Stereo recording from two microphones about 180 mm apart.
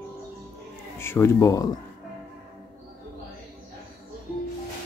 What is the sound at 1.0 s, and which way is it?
Speech, 15° left (ahead or behind).